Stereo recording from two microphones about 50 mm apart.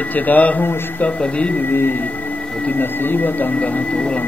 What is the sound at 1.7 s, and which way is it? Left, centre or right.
Music, left.